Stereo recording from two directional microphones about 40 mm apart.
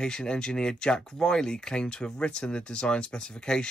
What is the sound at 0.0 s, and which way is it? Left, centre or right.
Speech, centre.